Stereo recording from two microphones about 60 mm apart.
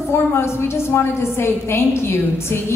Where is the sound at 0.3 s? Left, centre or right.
Left.